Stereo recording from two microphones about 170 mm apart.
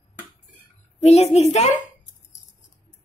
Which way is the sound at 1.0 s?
40° left (ahead or behind).